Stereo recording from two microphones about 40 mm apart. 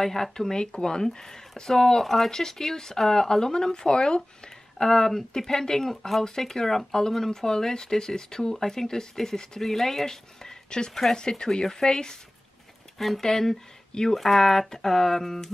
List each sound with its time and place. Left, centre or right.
0.0 s speech: centre
4.7 s speech: centre
13.2 s speech: centre